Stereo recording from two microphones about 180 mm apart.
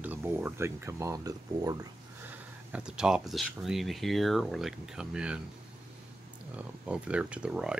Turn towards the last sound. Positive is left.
turn(degrees=-5)  # may be behind; listen again after turning